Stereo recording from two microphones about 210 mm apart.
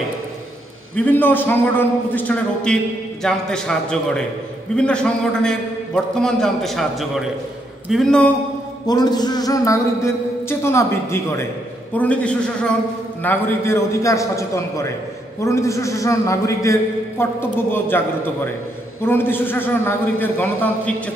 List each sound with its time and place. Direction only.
0.9 s a man's voice: 10° left (ahead or behind)
8.8 s a man's voice: 20° left (ahead or behind)